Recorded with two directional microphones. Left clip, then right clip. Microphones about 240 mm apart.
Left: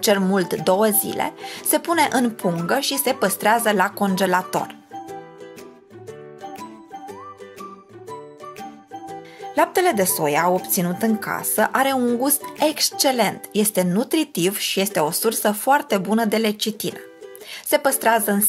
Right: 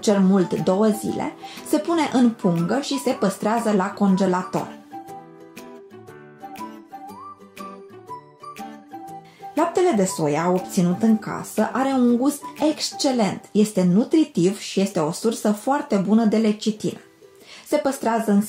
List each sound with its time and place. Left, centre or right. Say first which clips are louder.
0.0 s a woman's voice: left 1 dB; left
9.7 s a woman's voice: left 1 dB; left